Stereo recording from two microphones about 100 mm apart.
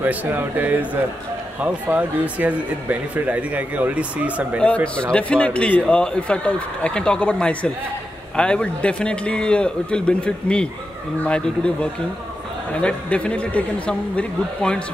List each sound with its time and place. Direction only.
0.0 s speech: 15° right (ahead or behind)
4.8 s speech: 10° left (ahead or behind)